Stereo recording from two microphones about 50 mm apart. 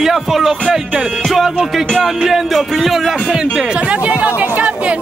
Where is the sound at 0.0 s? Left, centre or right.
Centre; by 4.9 s right.